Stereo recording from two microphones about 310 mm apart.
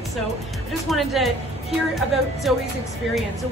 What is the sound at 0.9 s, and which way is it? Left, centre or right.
Speech, centre.